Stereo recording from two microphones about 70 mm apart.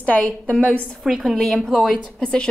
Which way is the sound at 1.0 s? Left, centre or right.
Centre.